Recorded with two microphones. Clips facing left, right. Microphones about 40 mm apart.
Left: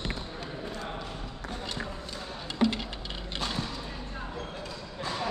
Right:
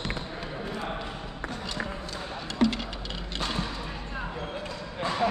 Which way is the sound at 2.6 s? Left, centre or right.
Centre.